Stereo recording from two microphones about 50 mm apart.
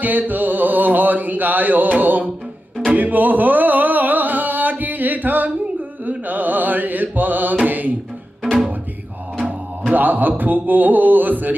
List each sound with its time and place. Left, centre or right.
0.0 s mantra: right
3.0 s a sound: right
6.0 s mantra: right
7.6 s music: right
9.9 s speech: right